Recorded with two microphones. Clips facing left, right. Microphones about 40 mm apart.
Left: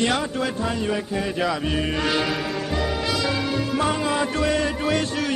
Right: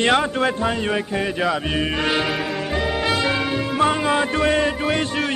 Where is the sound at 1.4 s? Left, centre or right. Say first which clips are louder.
Right 1 dB; right.